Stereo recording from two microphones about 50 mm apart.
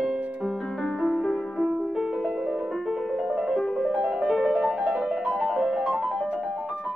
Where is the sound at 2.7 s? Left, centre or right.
Centre.